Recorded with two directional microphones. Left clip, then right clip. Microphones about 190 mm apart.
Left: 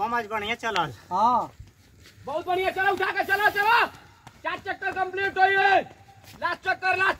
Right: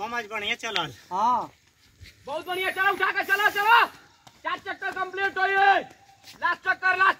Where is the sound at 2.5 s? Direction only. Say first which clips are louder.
Even; 50° left (ahead or behind).